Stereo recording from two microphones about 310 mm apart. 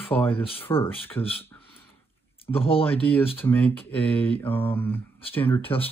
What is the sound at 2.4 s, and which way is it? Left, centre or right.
Mantra, centre.